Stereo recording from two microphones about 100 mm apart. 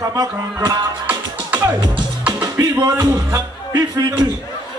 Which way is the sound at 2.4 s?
40° right (ahead or behind).